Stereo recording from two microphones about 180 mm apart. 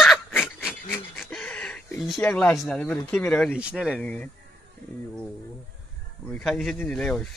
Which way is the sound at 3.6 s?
5° right (ahead or behind).